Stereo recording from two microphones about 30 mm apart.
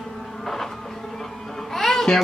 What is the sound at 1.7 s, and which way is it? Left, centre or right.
Music, centre.